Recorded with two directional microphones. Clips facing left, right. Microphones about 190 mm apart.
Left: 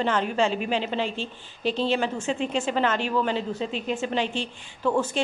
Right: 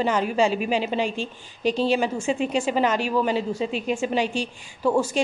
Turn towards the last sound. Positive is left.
turn(degrees=-10)  # may be behind; listen again after turning